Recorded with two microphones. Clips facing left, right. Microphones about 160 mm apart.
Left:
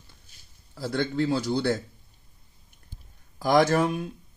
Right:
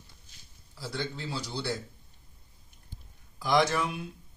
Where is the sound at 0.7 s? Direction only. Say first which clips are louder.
Left 10 dB; 55° left (ahead or behind).